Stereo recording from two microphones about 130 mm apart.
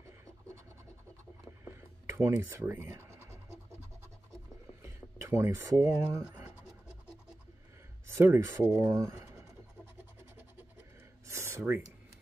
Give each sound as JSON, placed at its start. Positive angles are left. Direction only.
{"t": 1.6, "sound": "scratch", "side_deg": -20}
{"t": 4.8, "sound": "speech", "side_deg": -20}
{"t": 6.2, "sound": "scratch", "side_deg": -10}
{"t": 8.2, "sound": "speech", "side_deg": -20}
{"t": 11.2, "sound": "a sound", "side_deg": -20}